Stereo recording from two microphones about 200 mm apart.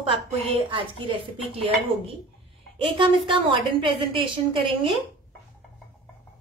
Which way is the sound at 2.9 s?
25° right (ahead or behind).